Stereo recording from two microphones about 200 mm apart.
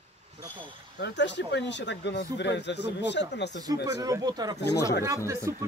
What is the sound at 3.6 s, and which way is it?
Speech, 15° right (ahead or behind).